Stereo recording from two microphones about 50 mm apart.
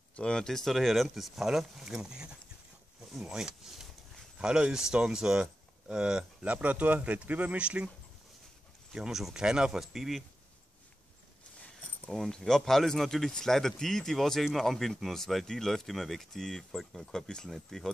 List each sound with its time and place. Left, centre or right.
0.1 s speech: centre
6.4 s speech: right
7.5 s speech: right
8.9 s speech: centre
12.1 s speech: centre